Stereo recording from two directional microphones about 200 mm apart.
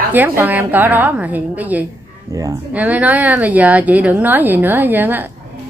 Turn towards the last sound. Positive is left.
turn(degrees=-10)  # may be behind; listen again after turning